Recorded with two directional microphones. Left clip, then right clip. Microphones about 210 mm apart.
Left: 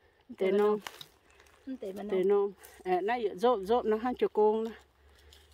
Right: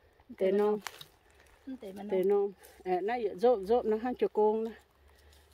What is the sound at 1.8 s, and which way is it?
Speech, 15° left (ahead or behind).